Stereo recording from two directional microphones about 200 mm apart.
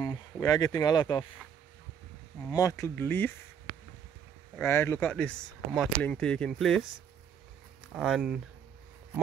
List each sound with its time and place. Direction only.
0.0 s a sound: 20° left (ahead or behind)
0.7 s speech: 20° left (ahead or behind)
2.5 s speech: 15° left (ahead or behind)
4.6 s speech: 10° left (ahead or behind)
7.9 s speech: centre (ahead or behind)